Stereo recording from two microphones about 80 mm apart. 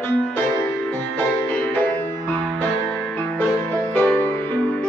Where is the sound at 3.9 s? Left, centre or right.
Left.